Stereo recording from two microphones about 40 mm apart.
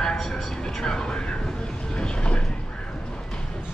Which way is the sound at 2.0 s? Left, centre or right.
Left.